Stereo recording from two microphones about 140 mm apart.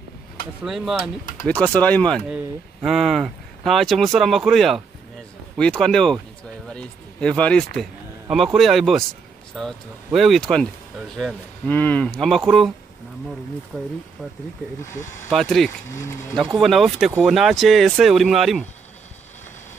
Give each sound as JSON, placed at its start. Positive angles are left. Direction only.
{"t": 0.7, "sound": "speech", "side_deg": 0}
{"t": 1.5, "sound": "speech", "side_deg": 10}
{"t": 2.2, "sound": "speech", "side_deg": -5}
{"t": 11.7, "sound": "speech", "side_deg": 15}
{"t": 13.7, "sound": "speech", "side_deg": -5}
{"t": 14.8, "sound": "speech", "side_deg": 20}
{"t": 15.2, "sound": "speech", "side_deg": 0}
{"t": 15.9, "sound": "speech", "side_deg": 20}
{"t": 16.3, "sound": "speech", "side_deg": 0}